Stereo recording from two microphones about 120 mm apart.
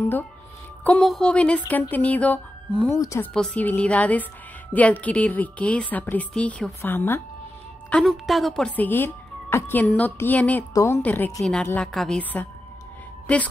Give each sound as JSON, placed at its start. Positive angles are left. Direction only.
{"t": 0.0, "sound": "speech", "side_deg": 15}
{"t": 1.0, "sound": "a woman's voice", "side_deg": 5}
{"t": 3.0, "sound": "a woman's voice", "side_deg": 25}
{"t": 3.3, "sound": "a woman's voice", "side_deg": 10}
{"t": 7.9, "sound": "a woman's voice", "side_deg": 0}
{"t": 10.7, "sound": "a woman's voice", "side_deg": 25}
{"t": 11.0, "sound": "a woman's voice", "side_deg": 15}
{"t": 11.9, "sound": "a woman's voice", "side_deg": 0}
{"t": 12.2, "sound": "a woman's voice", "side_deg": 15}